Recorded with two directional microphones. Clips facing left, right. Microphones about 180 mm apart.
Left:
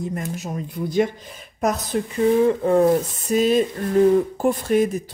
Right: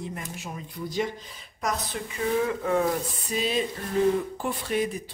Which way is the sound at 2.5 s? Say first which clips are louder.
Left 8 dB; 30° left (ahead or behind).